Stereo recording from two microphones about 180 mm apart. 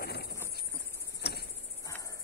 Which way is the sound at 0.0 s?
60° left (ahead or behind).